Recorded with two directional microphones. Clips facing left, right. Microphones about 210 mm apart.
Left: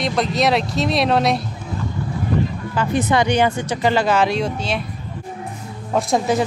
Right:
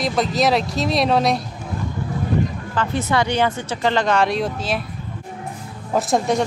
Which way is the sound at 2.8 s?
15° left (ahead or behind).